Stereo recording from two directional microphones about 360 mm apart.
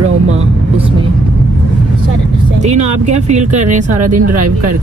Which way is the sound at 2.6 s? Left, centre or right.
Centre.